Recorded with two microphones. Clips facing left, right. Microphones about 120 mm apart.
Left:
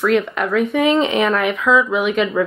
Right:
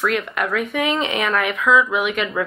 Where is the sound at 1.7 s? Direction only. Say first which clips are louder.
Left 1 dB; 5° right (ahead or behind).